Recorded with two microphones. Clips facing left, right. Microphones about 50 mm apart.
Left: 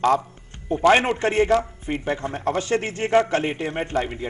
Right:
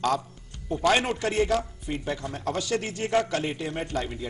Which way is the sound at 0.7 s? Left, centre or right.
Left.